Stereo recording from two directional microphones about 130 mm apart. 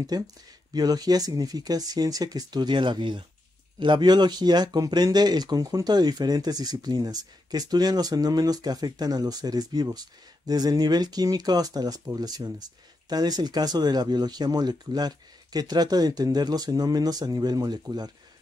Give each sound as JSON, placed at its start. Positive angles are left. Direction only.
{"t": 0.1, "sound": "speech", "side_deg": -30}